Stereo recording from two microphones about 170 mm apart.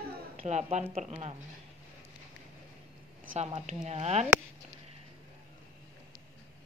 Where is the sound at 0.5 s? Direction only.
40° right (ahead or behind).